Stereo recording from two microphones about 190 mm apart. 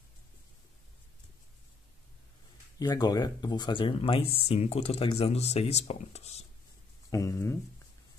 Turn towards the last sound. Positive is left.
turn(degrees=15)  # may be behind; listen again after turning